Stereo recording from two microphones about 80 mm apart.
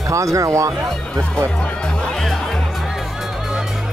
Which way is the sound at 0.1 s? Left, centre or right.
Right.